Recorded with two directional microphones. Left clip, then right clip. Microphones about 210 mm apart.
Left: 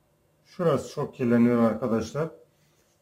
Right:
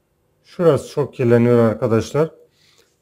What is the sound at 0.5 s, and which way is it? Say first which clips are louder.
Speech: right 9 dB; 50° right (ahead or behind).